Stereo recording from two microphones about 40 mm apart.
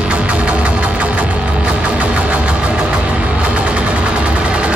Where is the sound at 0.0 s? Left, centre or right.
Right.